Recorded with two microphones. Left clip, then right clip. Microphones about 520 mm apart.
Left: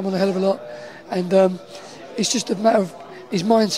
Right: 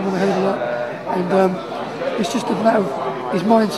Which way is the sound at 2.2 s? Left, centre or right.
Left.